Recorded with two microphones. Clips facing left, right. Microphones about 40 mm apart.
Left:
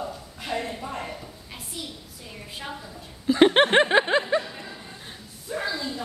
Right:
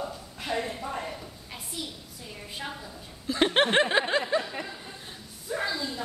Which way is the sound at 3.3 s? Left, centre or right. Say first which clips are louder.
Left 6 dB; centre.